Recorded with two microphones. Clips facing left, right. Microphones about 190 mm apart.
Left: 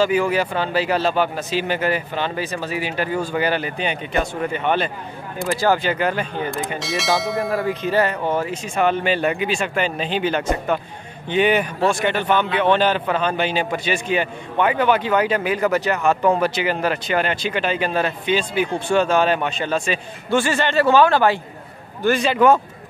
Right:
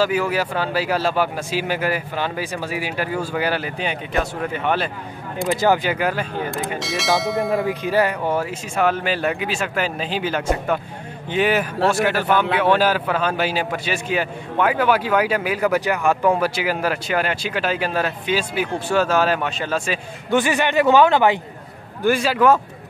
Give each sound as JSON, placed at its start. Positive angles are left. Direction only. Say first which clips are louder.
{"t": 0.0, "sound": "speech", "louder": "left 2 dB", "side_deg": -5}
{"t": 5.5, "sound": "speech", "louder": "right 1 dB", "side_deg": -15}
{"t": 20.2, "sound": "speech", "louder": "even", "side_deg": -15}
{"t": 22.0, "sound": "speech", "louder": "left 1 dB", "side_deg": -5}